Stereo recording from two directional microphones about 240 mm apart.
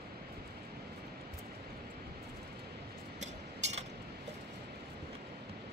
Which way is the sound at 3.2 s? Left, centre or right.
Right.